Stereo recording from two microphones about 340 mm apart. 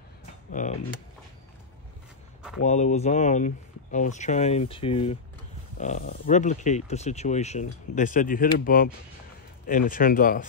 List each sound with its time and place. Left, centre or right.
0.5 s speech: left
2.6 s speech: left